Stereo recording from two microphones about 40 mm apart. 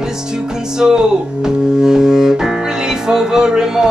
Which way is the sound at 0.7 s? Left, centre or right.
Centre.